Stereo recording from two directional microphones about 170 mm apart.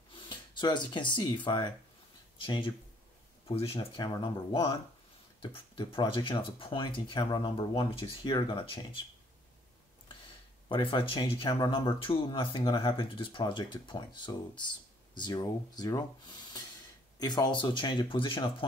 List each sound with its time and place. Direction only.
0.1 s speech: 25° left (ahead or behind)
10.7 s speech: 30° left (ahead or behind)